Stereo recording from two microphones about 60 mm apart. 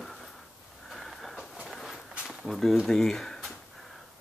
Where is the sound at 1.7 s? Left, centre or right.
Centre.